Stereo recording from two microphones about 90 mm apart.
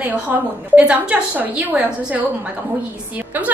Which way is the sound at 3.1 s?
20° right (ahead or behind).